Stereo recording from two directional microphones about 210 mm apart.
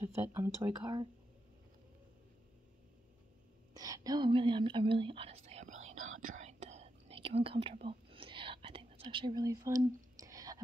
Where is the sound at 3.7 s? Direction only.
15° right (ahead or behind).